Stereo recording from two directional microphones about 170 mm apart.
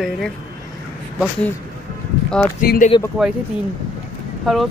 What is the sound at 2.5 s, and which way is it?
Speech, 55° left (ahead or behind).